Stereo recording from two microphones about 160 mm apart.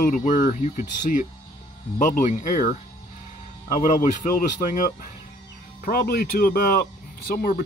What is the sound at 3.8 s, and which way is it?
Speech, 55° left (ahead or behind).